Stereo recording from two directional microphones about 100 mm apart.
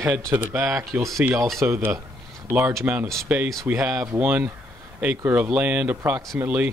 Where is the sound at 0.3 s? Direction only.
20° right (ahead or behind).